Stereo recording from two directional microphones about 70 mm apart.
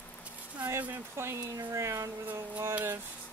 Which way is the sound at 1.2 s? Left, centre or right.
Right.